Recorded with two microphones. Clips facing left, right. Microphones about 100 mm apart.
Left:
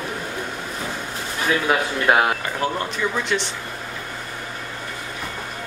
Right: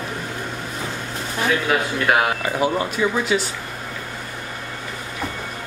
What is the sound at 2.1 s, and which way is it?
Speech, 25° left (ahead or behind).